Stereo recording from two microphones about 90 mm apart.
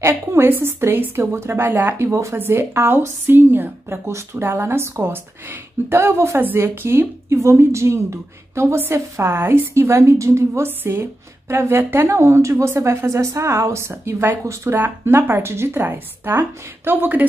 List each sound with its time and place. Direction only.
0.0 s a woman's voice: 30° right (ahead or behind)